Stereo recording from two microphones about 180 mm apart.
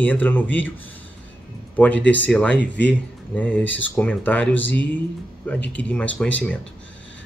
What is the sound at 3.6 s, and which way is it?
Speech, 90° left.